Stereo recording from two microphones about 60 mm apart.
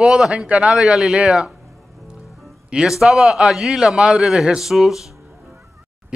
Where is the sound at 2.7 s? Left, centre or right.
Centre.